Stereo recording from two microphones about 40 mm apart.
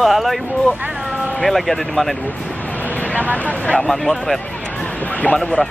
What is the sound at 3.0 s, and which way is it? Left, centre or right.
Vehicle, left.